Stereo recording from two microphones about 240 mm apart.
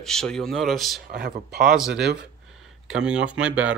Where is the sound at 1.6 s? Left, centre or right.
Centre.